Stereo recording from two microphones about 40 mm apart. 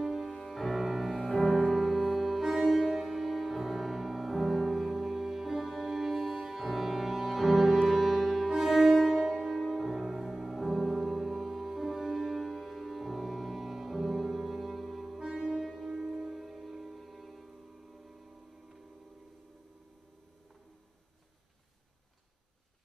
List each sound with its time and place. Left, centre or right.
0.0 s music: centre
1.2 s music: centre
1.5 s music: centre
15.1 s saxophone: centre
15.9 s music: centre